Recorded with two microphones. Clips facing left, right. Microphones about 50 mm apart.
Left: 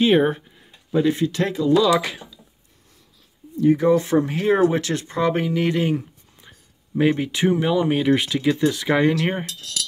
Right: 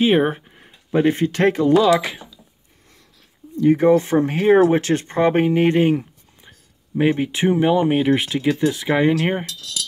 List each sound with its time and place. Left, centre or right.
0.0 s speech: centre
0.5 s speech: right
1.5 s speech: right
2.0 s speech: centre
3.5 s speech: right
3.9 s speech: right; by 9.5 s centre